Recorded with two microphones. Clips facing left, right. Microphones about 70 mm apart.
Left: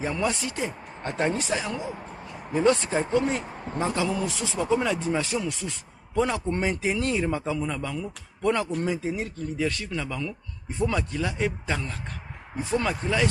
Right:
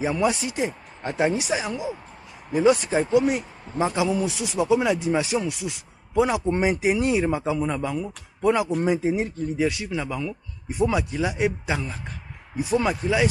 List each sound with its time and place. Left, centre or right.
0.0 s speech: centre